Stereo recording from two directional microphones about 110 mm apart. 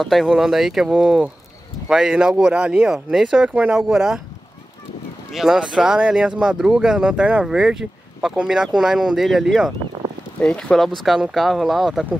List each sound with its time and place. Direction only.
0.0 s speech: centre (ahead or behind)
5.3 s speech: 5° right (ahead or behind)